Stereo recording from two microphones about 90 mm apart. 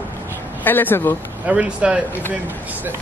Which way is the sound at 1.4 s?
15° right (ahead or behind).